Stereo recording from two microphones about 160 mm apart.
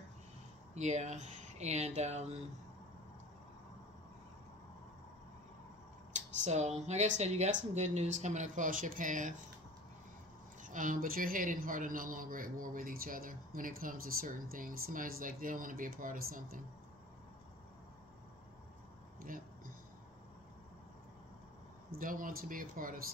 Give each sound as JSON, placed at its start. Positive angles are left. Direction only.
{"t": 0.7, "sound": "speech", "side_deg": -45}
{"t": 6.4, "sound": "speech", "side_deg": -45}
{"t": 10.6, "sound": "a woman's voice", "side_deg": -55}
{"t": 19.2, "sound": "a sound", "side_deg": -60}
{"t": 22.0, "sound": "a woman's voice", "side_deg": -60}